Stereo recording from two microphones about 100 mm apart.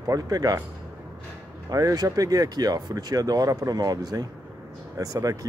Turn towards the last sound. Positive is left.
turn(degrees=-35)  # may be behind; listen again after turning